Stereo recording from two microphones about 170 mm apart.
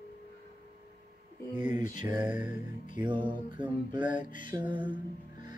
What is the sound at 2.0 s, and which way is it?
Music, 25° right (ahead or behind).